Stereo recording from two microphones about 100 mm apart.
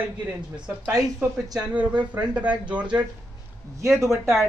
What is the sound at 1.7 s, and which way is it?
Speech, 15° right (ahead or behind).